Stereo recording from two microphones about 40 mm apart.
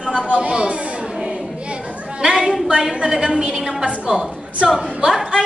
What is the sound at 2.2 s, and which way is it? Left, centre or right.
A woman's voice, centre.